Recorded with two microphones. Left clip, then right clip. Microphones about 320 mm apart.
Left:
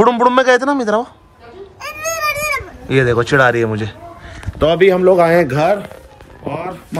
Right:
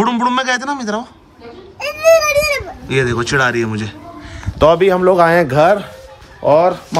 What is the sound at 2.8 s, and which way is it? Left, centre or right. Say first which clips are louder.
Speech: left 3 dB; centre.